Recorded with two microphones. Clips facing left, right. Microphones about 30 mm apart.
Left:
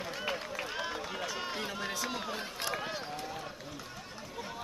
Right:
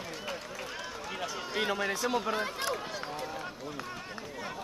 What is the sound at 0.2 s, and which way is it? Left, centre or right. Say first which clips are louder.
Run: left 2 dB; centre.